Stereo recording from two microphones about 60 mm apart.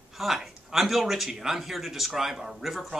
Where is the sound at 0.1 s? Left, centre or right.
Centre.